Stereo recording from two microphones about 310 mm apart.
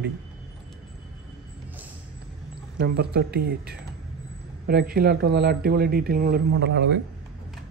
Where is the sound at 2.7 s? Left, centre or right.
Right.